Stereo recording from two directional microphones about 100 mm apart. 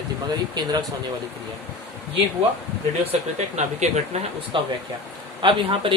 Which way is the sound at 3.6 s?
90° right.